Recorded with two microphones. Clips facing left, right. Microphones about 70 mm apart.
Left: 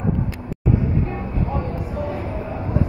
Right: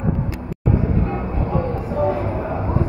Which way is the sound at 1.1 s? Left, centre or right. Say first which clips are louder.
Right 3 dB; right.